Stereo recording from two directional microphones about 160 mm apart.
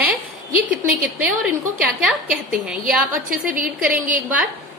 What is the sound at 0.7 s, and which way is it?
Speech, 10° right (ahead or behind).